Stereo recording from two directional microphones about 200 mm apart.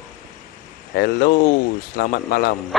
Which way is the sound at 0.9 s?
55° left (ahead or behind).